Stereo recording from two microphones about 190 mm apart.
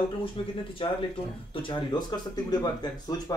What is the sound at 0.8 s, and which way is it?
Speech, 30° left (ahead or behind).